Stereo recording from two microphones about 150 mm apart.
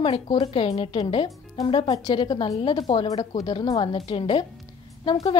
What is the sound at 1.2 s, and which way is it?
A woman's voice, 25° left (ahead or behind).